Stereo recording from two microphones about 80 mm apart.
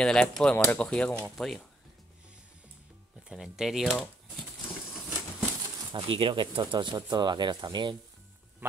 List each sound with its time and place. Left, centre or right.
0.0 s speech: centre
1.2 s speech: centre
3.3 s speech: centre
5.9 s speech: right